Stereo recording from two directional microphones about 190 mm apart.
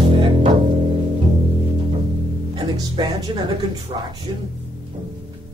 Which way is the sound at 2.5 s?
25° right (ahead or behind).